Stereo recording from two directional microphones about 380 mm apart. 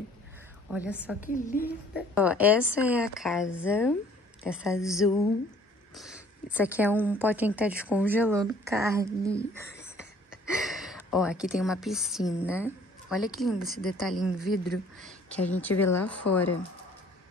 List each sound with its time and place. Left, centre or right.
0.7 s speech: centre
1.2 s a woman's voice: left
2.1 s speech: centre
9.4 s a sound: centre
12.6 s a woman's voice: centre